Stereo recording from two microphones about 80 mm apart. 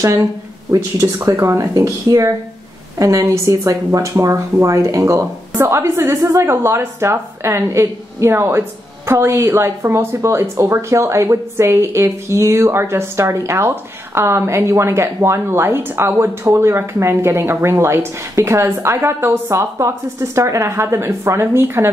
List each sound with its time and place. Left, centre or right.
0.0 s a woman's voice: right